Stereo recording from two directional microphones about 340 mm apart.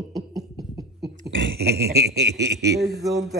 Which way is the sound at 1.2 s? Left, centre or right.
Right.